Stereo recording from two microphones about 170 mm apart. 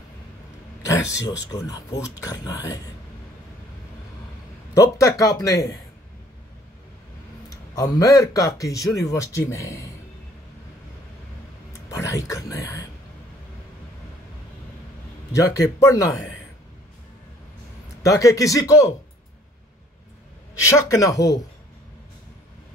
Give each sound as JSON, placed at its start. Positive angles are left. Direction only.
{"t": 0.8, "sound": "a man's voice", "side_deg": 20}
{"t": 4.9, "sound": "a man's voice", "side_deg": 20}
{"t": 7.4, "sound": "a man's voice", "side_deg": 20}
{"t": 11.9, "sound": "speech", "side_deg": 20}
{"t": 15.3, "sound": "a man's voice", "side_deg": 20}
{"t": 18.0, "sound": "a man's voice", "side_deg": 20}
{"t": 20.6, "sound": "a man's voice", "side_deg": 20}